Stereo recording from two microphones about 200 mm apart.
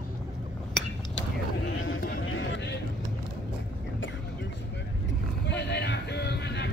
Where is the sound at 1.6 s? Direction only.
70° left (ahead or behind).